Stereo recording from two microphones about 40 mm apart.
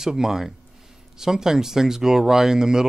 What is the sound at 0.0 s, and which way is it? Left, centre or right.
Speech, centre.